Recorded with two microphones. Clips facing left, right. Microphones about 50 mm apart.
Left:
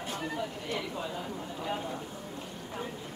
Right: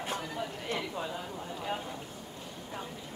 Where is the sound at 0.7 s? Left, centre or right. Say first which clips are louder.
Even; centre.